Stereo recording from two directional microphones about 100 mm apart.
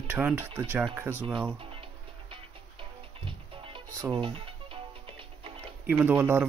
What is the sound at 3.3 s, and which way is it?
Music, 60° right (ahead or behind).